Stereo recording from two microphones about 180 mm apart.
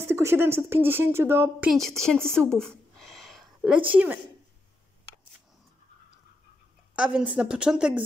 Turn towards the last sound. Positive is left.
turn(degrees=-5)  # may be behind; listen again after turning